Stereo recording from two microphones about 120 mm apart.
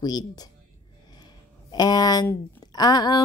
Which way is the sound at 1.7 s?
35° left (ahead or behind).